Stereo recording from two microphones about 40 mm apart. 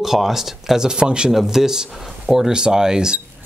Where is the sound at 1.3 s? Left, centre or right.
Centre.